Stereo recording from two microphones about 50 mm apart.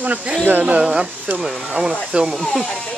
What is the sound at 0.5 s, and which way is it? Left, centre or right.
Speech, right.